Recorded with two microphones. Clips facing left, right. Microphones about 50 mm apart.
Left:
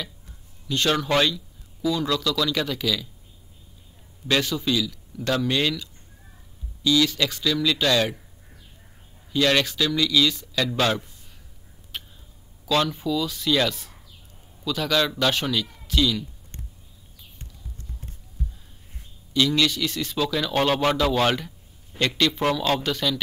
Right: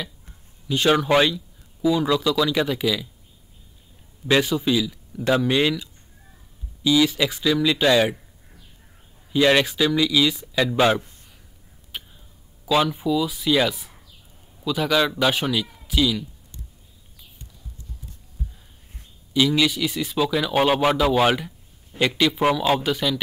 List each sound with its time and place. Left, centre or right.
0.7 s a man's voice: centre
4.3 s a man's voice: centre
9.3 s a man's voice: centre
11.9 s a sound: centre
12.6 s a man's voice: centre
19.3 s a man's voice: centre